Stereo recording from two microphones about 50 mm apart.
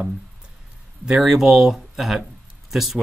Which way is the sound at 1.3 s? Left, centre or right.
Centre.